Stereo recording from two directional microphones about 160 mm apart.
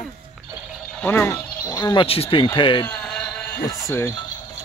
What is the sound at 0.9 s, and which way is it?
Speech, 10° left (ahead or behind).